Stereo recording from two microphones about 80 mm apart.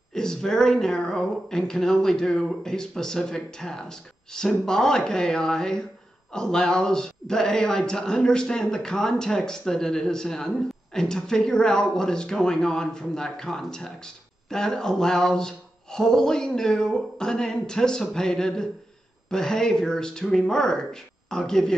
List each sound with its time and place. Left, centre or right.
0.1 s speech: centre